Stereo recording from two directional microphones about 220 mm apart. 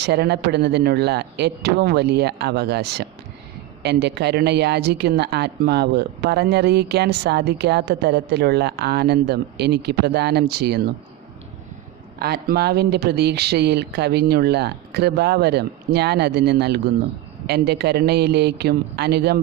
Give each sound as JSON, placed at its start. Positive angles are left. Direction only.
{"t": 0.0, "sound": "a woman's voice", "side_deg": -50}
{"t": 12.2, "sound": "a woman's voice", "side_deg": -45}